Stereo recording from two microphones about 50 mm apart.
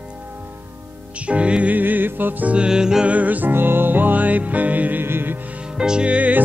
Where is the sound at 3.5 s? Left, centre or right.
Right.